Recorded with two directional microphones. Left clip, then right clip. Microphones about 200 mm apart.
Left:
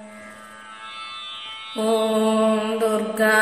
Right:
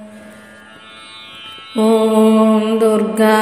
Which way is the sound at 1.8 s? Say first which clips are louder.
Right 8 dB; 25° right (ahead or behind).